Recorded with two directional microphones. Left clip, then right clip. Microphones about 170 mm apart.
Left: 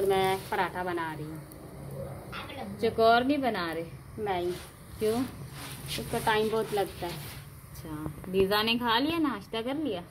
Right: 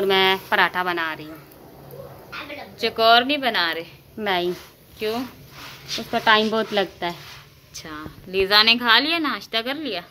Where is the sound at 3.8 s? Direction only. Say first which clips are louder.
Right 5 dB; 45° right (ahead or behind).